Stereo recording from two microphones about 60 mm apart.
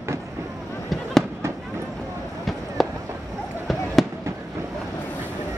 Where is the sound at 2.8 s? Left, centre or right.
Centre.